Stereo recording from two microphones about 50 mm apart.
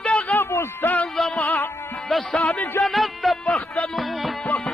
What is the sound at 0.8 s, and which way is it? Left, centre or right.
Music, left.